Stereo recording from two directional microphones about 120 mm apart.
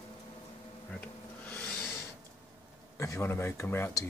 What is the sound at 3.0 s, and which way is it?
Speech, 25° left (ahead or behind).